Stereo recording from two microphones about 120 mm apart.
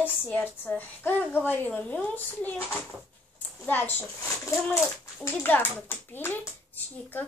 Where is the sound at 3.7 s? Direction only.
15° left (ahead or behind).